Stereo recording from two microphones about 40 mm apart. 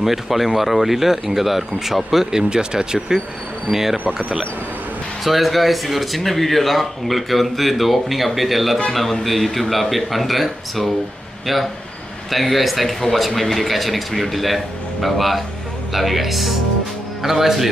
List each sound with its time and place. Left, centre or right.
0.0 s speech: centre
2.3 s speech: centre
3.7 s speech: right
5.2 s speech: centre